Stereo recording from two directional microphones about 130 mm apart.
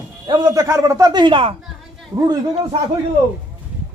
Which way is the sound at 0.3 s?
30° right (ahead or behind).